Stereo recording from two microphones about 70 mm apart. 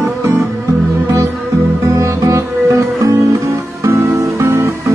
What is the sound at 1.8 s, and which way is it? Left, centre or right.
Guitar, right.